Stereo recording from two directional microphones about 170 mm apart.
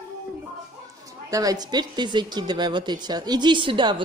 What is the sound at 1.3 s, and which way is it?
A woman's voice, 20° right (ahead or behind).